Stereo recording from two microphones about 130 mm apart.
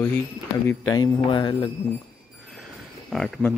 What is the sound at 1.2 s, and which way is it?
Speech, 40° left (ahead or behind).